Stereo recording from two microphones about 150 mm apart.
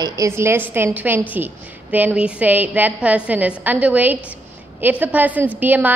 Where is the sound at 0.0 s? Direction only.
20° right (ahead or behind).